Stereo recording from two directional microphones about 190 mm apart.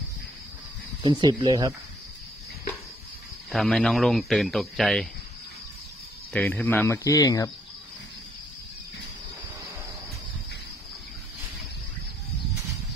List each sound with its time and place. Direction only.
1.0 s speech: 20° right (ahead or behind)
3.5 s speech: centre (ahead or behind)
6.3 s speech: 10° left (ahead or behind)